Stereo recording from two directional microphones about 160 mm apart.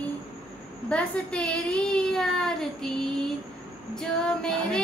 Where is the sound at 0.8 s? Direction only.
5° left (ahead or behind).